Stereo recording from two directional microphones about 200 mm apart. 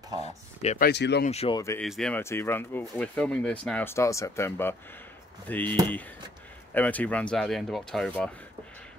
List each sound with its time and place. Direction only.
0.6 s speech: 35° left (ahead or behind)
0.8 s speech: 55° left (ahead or behind)
1.2 s speech: 30° left (ahead or behind)
1.8 s speech: 5° left (ahead or behind)